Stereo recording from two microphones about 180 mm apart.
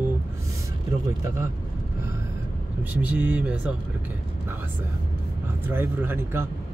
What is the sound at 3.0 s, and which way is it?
Speech, 10° right (ahead or behind).